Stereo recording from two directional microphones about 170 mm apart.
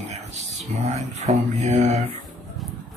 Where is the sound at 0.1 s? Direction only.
40° right (ahead or behind).